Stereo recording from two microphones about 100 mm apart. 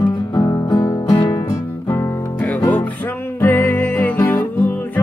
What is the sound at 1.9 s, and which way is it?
Music, 15° left (ahead or behind).